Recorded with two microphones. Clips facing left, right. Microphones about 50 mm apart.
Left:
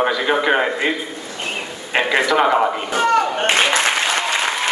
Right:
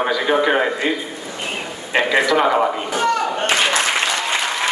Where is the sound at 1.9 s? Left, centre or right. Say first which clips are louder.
Even; centre.